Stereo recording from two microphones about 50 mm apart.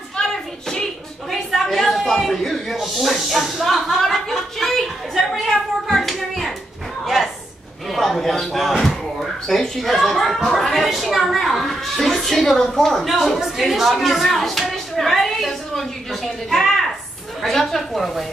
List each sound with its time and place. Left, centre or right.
0.3 s hands: centre
1.3 s snake: centre
5.3 s clapping: centre
7.9 s a sound: centre
10.8 s a woman's voice: centre
14.0 s a sound: centre
17.4 s a woman's voice: centre